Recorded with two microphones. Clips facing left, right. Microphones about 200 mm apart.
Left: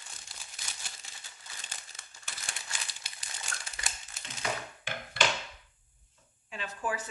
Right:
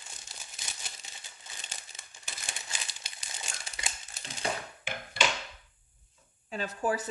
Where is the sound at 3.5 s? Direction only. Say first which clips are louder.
Left 5 dB; 20° right (ahead or behind).